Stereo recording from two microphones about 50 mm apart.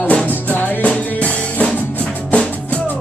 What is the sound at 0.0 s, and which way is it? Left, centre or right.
Music, left.